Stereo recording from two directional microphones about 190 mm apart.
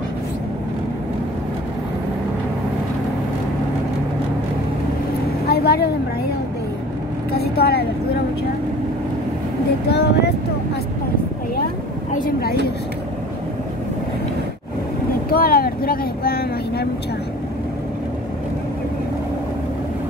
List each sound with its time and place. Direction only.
5.5 s vehicle: 55° left (ahead or behind)
7.3 s vehicle: 55° left (ahead or behind)
9.8 s speech: 60° left (ahead or behind)
12.1 s a sound: 45° left (ahead or behind)
15.2 s vehicle: 50° left (ahead or behind)